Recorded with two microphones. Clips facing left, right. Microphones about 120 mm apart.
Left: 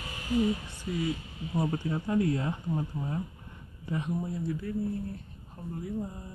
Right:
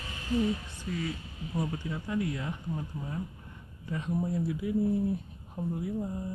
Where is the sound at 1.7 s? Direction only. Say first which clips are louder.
Left 4 dB; 40° left (ahead or behind).